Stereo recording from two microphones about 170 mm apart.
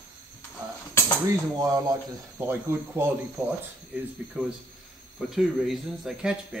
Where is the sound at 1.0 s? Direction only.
15° left (ahead or behind).